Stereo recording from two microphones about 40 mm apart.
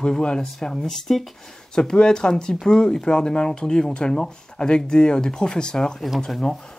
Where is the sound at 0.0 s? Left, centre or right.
Centre.